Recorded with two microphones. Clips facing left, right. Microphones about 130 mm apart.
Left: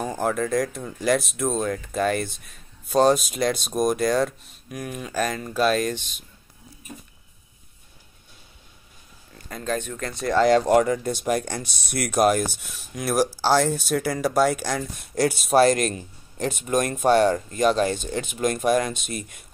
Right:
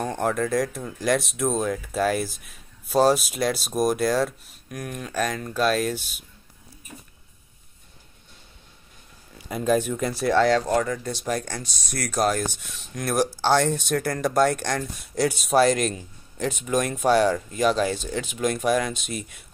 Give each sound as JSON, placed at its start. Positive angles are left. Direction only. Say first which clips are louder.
{"t": 0.0, "sound": "speech", "louder": "even", "side_deg": 0}
{"t": 9.3, "sound": "speech", "louder": "right 6 dB", "side_deg": -10}
{"t": 10.5, "sound": "speech", "louder": "left 4 dB", "side_deg": 20}
{"t": 11.6, "sound": "speech", "louder": "left 1 dB", "side_deg": 60}
{"t": 11.9, "sound": "speech", "louder": "left 4 dB", "side_deg": 15}
{"t": 15.6, "sound": "speech", "louder": "left 2 dB", "side_deg": 50}
{"t": 16.9, "sound": "speech", "louder": "left 2 dB", "side_deg": 0}